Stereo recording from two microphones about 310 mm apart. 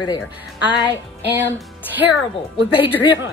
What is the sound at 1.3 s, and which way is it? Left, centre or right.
Speech, centre.